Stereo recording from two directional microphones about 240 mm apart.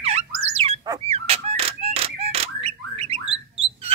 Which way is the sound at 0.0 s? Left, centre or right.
Right.